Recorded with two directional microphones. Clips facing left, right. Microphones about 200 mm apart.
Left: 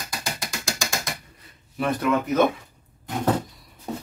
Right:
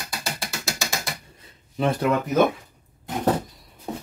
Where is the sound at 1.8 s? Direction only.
25° right (ahead or behind).